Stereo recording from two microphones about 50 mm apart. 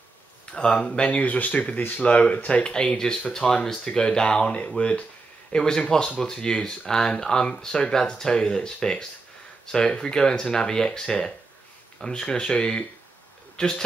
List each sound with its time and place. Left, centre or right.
0.5 s speech: centre